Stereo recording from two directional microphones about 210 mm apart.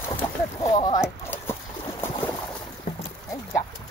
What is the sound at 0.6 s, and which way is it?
Speech, 20° left (ahead or behind).